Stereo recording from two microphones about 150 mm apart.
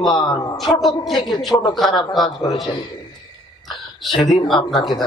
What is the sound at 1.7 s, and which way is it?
Speech, centre (ahead or behind).